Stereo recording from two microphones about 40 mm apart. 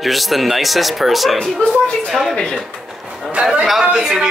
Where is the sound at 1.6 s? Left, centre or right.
Left.